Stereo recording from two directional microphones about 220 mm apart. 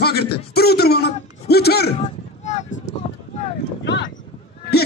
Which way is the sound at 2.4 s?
35° left (ahead or behind).